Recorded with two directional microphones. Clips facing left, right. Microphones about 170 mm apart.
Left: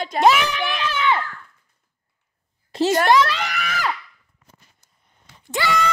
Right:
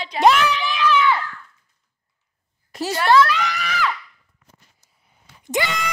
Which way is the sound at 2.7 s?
25° left (ahead or behind).